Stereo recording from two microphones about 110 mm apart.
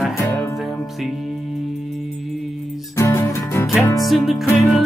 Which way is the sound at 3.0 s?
25° left (ahead or behind).